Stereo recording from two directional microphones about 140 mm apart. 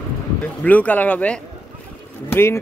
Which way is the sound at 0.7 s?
10° left (ahead or behind).